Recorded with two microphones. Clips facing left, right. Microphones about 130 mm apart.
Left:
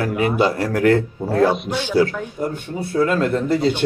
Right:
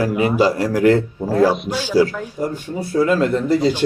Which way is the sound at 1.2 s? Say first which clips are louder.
Right 1 dB; centre (ahead or behind).